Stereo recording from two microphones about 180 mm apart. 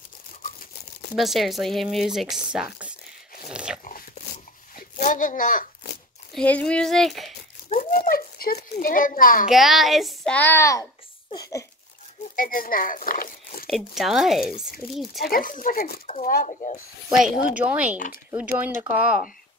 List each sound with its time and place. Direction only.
1.1 s speech: centre (ahead or behind)
3.4 s dog: 5° right (ahead or behind)
4.7 s a sound: 45° left (ahead or behind)
6.3 s speech: 5° left (ahead or behind)
7.8 s a child's voice: 50° left (ahead or behind)
9.5 s speech: centre (ahead or behind); by 10.9 s 15° left (ahead or behind)
11.3 s a sound: 20° left (ahead or behind)
12.4 s speech: 50° left (ahead or behind)
13.7 s speech: centre (ahead or behind)
15.2 s speech: 50° left (ahead or behind)
17.6 s speech: 10° right (ahead or behind)
17.9 s speech: 45° left (ahead or behind)
18.3 s speech: 10° right (ahead or behind)